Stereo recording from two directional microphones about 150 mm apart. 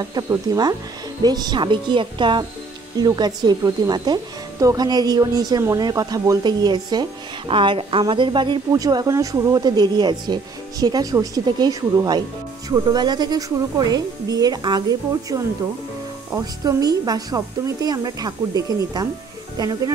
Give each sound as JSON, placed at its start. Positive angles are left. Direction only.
{"t": 0.0, "sound": "speech", "side_deg": -25}